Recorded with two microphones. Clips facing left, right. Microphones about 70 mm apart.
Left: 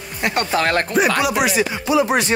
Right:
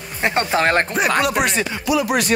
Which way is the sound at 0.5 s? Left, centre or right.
Right.